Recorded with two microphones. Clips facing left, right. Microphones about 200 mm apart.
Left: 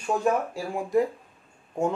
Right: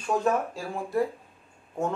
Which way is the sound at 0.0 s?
10° left (ahead or behind).